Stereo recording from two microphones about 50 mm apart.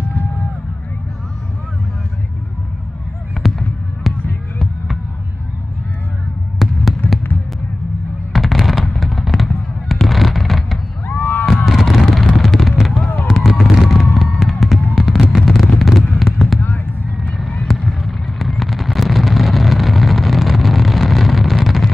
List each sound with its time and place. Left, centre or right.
3.4 s fireworks: centre
6.6 s fireworks: centre
7.0 s fireworks: left
8.3 s fireworks: centre
11.1 s a sound: left
11.4 s a sound: centre
12.4 s fireworks: centre